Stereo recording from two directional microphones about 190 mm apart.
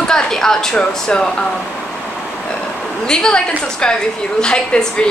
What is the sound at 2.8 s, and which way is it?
A woman's voice, 5° left (ahead or behind).